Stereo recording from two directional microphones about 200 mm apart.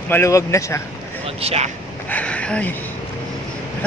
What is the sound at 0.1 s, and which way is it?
Speech, 15° left (ahead or behind).